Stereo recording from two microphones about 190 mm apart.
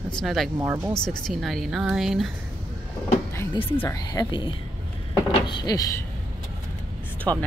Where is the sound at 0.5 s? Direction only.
10° right (ahead or behind).